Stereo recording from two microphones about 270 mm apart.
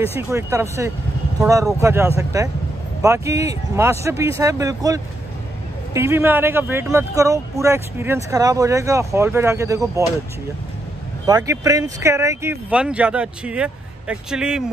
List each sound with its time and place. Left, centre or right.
0.3 s speech: centre
11.2 s speech: centre